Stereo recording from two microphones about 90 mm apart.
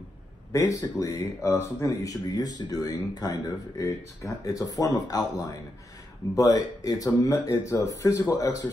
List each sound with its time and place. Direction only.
0.5 s speech: 40° left (ahead or behind)
2.0 s speech: 45° left (ahead or behind)
6.3 s speech: 45° left (ahead or behind)